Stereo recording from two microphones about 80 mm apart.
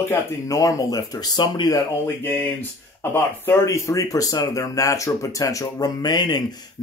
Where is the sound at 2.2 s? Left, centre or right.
Left.